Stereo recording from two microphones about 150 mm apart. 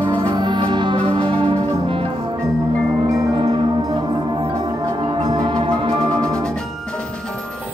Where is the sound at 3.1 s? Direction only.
25° right (ahead or behind).